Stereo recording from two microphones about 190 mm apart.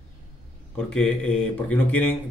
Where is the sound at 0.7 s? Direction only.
5° left (ahead or behind).